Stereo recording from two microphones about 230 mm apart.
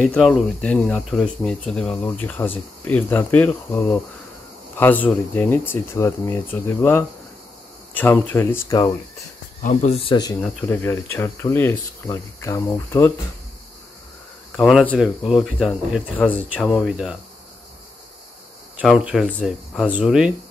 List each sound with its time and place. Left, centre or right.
0.0 s speech: centre
9.6 s speech: left
10.4 s speech: centre
14.6 s speech: centre
18.8 s speech: centre